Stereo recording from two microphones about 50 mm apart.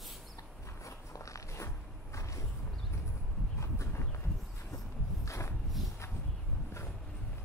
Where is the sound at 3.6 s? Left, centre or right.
Left.